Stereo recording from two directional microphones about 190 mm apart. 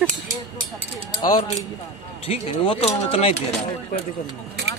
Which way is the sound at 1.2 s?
20° left (ahead or behind).